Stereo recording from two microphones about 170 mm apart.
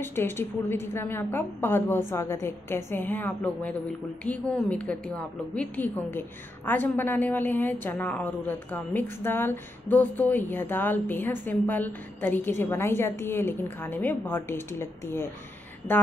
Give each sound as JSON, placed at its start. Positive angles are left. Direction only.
{"t": 0.0, "sound": "a woman's voice", "side_deg": 15}